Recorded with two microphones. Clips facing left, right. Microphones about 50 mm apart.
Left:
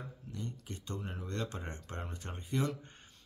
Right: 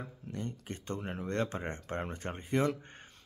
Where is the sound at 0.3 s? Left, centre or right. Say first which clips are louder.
Right 4 dB; right.